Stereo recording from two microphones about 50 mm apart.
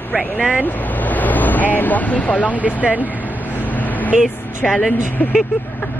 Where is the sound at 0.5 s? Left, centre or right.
Left.